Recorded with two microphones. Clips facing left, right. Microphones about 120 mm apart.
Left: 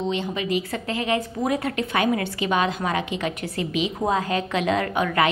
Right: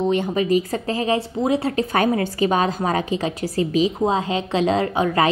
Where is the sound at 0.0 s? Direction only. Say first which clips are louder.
Right 6 dB; 50° right (ahead or behind).